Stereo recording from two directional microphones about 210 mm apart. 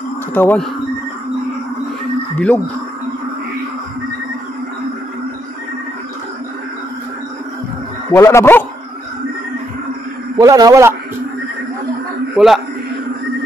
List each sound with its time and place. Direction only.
0.3 s speech: 10° left (ahead or behind)
2.3 s speech: 10° left (ahead or behind)
8.1 s speech: 15° left (ahead or behind)
10.3 s a man's voice: 15° right (ahead or behind)
12.4 s a man's voice: centre (ahead or behind)